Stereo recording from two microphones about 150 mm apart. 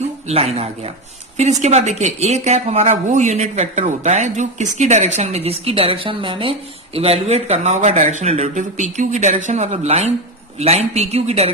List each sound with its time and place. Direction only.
0.3 s speech: 45° right (ahead or behind)